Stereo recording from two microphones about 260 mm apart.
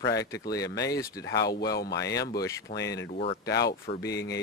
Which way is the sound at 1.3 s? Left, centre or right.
Left.